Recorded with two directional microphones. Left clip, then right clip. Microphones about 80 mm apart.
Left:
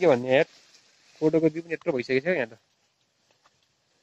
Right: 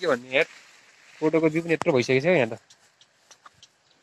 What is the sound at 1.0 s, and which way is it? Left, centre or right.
Speech, left.